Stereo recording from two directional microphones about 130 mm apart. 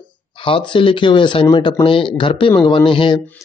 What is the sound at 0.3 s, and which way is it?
Speech, 40° left (ahead or behind).